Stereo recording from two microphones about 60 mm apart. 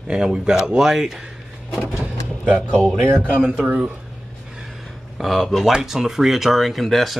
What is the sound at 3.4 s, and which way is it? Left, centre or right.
Speech, centre.